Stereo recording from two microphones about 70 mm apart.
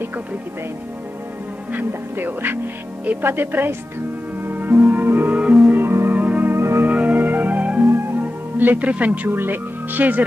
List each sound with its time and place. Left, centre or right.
1.7 s a woman's voice: right
4.5 s music: right
6.5 s music: right
6.9 s music: right
7.8 s music: right